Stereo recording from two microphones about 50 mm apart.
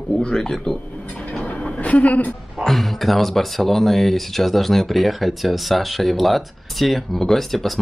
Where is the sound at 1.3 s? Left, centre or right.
Left.